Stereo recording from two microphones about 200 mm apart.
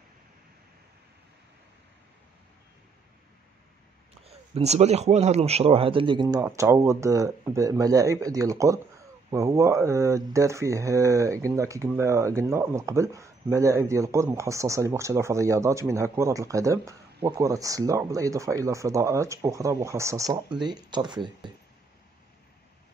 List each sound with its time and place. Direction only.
4.3 s speech: 30° right (ahead or behind)